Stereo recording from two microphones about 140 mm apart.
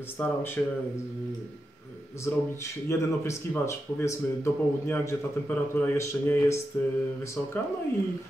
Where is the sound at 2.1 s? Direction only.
20° left (ahead or behind).